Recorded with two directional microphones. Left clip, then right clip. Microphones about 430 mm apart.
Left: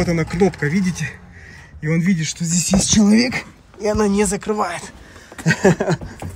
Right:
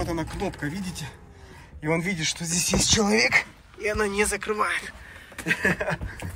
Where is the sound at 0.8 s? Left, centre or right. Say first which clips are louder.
Left 11 dB; right.